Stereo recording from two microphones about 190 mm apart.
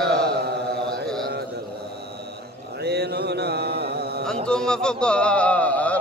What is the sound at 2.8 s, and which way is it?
Mantra, 60° right (ahead or behind).